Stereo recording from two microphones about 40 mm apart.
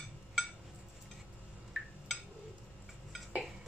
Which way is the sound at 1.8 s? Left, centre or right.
Centre.